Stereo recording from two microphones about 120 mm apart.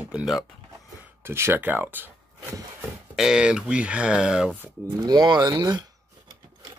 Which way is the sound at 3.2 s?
5° right (ahead or behind).